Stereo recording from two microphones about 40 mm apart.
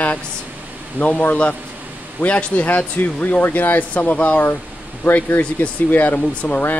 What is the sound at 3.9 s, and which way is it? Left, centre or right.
Speech, left.